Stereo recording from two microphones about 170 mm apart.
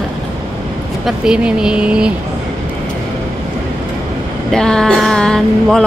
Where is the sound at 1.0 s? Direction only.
5° right (ahead or behind).